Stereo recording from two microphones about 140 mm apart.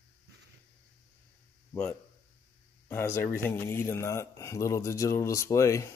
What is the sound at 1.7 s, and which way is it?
Speech, 10° left (ahead or behind).